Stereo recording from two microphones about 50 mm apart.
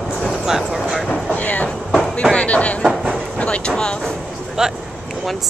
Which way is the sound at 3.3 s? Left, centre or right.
Left.